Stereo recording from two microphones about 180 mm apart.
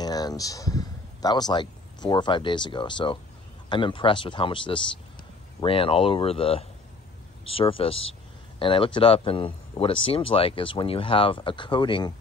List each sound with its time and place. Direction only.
0.0 s speech: 20° left (ahead or behind)